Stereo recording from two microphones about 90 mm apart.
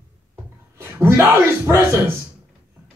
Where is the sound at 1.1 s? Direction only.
20° right (ahead or behind).